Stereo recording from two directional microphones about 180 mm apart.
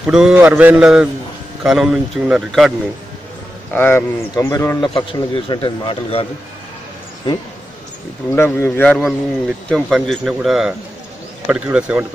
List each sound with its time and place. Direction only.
0.0 s a man's voice: 5° right (ahead or behind)
3.7 s a man's voice: 10° left (ahead or behind); by 6.2 s 30° left (ahead or behind)
8.3 s a man's voice: 15° left (ahead or behind); by 12.1 s 10° right (ahead or behind)